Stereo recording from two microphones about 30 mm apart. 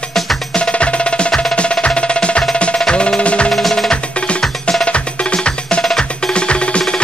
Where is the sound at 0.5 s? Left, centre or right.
Left.